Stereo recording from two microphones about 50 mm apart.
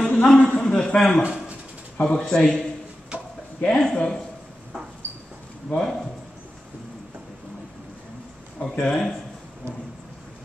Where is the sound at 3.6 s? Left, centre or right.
Centre.